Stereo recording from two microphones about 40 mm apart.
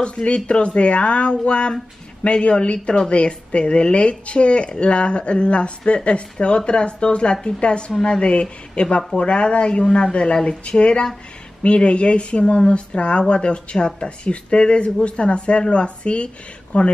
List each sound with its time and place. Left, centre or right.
0.0 s speech: left